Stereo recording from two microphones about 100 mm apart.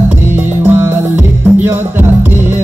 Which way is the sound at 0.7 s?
20° right (ahead or behind).